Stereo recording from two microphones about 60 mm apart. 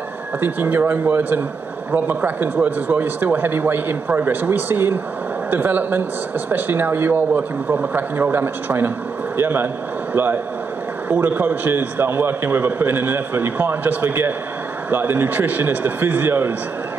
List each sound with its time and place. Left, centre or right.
0.4 s a man's voice: right